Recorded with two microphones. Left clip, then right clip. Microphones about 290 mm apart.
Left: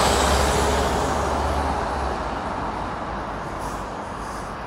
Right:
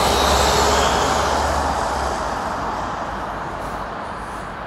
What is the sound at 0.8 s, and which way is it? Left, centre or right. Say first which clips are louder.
Vehicle: right 5 dB; right.